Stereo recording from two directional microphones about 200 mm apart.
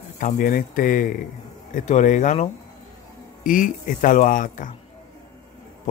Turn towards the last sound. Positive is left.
turn(degrees=40)  # may be behind; listen again after turning